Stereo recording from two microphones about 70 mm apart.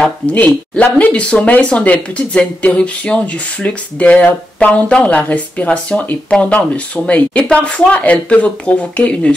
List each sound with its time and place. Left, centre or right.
0.0 s speech: left